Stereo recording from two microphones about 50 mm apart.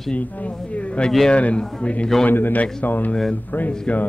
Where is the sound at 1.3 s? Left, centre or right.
Left.